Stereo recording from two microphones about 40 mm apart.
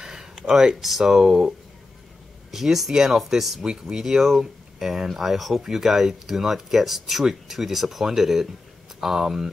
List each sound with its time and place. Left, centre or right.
0.0 s a sound: centre
0.7 s speech: centre
2.5 s speech: centre